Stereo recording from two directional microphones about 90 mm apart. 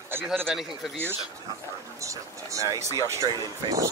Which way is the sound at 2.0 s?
35° right (ahead or behind).